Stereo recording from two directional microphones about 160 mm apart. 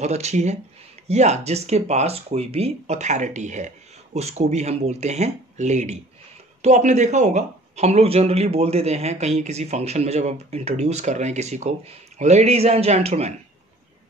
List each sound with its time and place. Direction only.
0.0 s a man's voice: 45° right (ahead or behind)